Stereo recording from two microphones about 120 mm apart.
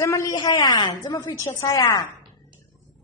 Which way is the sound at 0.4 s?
40° left (ahead or behind).